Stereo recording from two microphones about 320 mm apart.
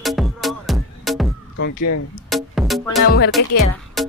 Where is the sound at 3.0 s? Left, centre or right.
Left.